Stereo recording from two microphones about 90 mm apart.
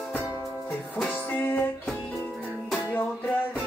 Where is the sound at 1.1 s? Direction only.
20° left (ahead or behind).